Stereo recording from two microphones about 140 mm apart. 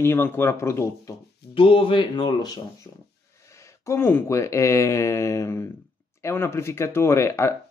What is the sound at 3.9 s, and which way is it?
A man's voice, 15° left (ahead or behind).